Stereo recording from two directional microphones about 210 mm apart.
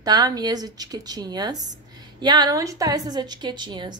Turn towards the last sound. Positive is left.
turn(degrees=-20)  # may be behind; listen again after turning